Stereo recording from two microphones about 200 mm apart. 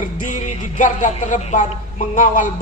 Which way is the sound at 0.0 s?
40° left (ahead or behind).